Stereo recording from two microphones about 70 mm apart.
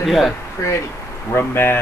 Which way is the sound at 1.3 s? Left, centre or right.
Left.